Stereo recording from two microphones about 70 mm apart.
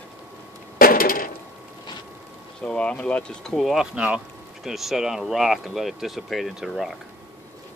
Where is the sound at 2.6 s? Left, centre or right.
Centre.